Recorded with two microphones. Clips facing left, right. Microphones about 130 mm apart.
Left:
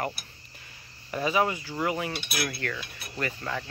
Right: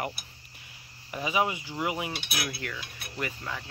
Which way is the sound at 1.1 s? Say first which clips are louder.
Left 2 dB; 10° right (ahead or behind).